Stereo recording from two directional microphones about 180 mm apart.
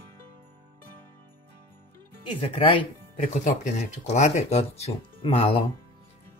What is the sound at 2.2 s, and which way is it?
Speech, 30° left (ahead or behind).